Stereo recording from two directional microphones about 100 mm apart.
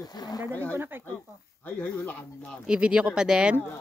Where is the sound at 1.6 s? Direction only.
15° left (ahead or behind).